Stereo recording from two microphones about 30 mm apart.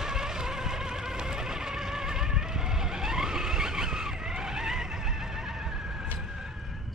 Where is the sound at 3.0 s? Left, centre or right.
Centre.